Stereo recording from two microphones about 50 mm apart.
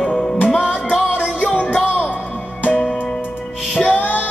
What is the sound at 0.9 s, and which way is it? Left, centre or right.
Music, centre.